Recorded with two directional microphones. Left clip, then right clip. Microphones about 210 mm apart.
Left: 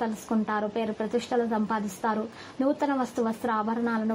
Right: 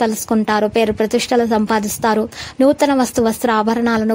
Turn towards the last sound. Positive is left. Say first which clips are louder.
# right 12 dB
turn(degrees=-50)  # may be behind; listen again after turning